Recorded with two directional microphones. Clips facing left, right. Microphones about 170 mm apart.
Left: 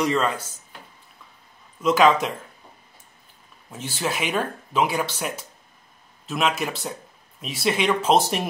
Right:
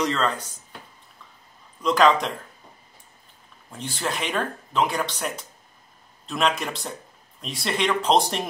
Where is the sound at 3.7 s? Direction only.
5° left (ahead or behind).